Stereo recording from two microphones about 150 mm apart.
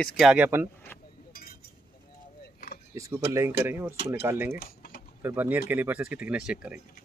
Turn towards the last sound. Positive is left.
turn(degrees=-5)  # may be behind; listen again after turning